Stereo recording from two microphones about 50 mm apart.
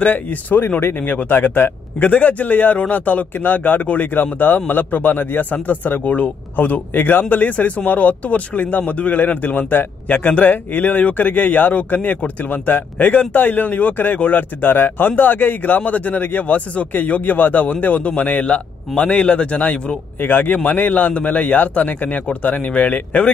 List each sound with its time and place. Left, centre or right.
0.0 s a man's voice: left
20.2 s a man's voice: left